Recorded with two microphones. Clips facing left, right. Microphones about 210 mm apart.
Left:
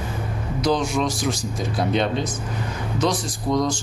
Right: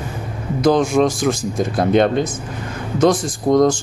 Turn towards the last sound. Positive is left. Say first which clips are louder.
# right 8 dB
turn(degrees=-50)  # may be behind; listen again after turning